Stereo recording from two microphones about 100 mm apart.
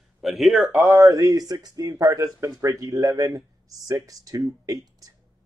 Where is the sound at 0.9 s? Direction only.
35° right (ahead or behind).